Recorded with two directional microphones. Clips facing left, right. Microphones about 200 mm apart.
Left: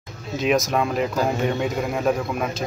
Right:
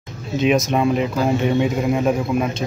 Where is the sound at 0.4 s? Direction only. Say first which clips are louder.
Right 3 dB; centre (ahead or behind).